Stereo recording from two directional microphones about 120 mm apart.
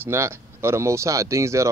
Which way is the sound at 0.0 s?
20° right (ahead or behind).